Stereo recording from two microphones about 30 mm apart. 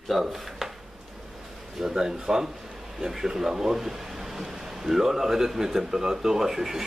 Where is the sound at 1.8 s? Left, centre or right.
Centre.